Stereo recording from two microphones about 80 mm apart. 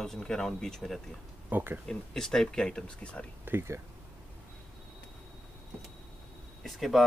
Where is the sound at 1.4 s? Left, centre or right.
Right.